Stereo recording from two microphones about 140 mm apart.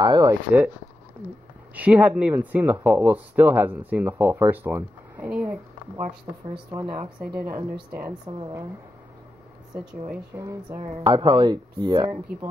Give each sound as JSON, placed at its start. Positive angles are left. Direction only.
{"t": 0.0, "sound": "speech", "side_deg": -30}
{"t": 1.8, "sound": "speech", "side_deg": -10}
{"t": 7.2, "sound": "speech", "side_deg": -5}
{"t": 8.3, "sound": "speech", "side_deg": -35}
{"t": 10.3, "sound": "speech", "side_deg": -20}
{"t": 11.0, "sound": "speech", "side_deg": -35}